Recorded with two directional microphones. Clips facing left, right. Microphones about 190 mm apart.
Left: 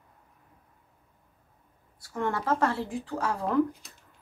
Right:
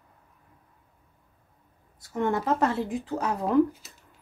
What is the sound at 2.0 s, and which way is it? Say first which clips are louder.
Speech: right 4 dB; 20° right (ahead or behind).